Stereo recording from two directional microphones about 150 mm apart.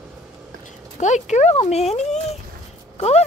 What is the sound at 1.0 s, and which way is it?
Speech, 50° left (ahead or behind).